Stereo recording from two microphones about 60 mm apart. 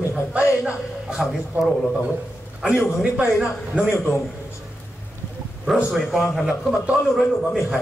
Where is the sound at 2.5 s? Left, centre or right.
Centre.